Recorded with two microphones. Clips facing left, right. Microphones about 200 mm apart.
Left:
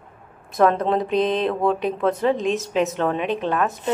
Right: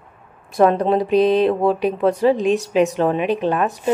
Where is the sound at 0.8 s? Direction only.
10° right (ahead or behind).